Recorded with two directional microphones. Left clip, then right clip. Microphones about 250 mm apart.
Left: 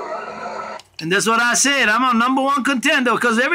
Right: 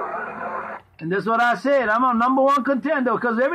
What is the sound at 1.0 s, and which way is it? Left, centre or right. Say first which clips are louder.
Speech: left 3 dB; left.